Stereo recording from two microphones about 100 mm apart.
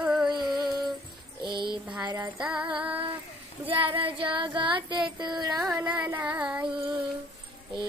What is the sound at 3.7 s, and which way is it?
Child singing, 60° right (ahead or behind).